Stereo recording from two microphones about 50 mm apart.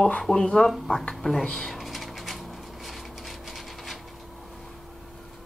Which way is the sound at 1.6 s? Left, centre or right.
Centre.